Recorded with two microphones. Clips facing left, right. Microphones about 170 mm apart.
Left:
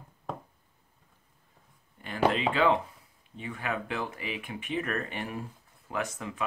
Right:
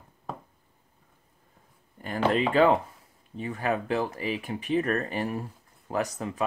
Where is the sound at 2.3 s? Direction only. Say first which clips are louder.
Right 4 dB; 40° right (ahead or behind).